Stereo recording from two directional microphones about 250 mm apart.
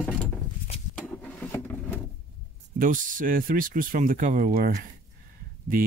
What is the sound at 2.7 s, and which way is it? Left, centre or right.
Speech, right.